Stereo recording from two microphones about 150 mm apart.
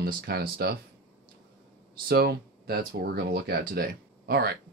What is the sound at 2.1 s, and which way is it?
Speech, 90° right.